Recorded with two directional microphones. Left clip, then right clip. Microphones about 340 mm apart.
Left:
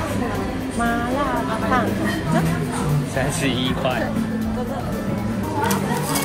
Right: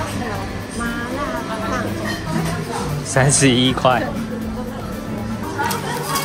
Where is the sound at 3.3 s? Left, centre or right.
Right.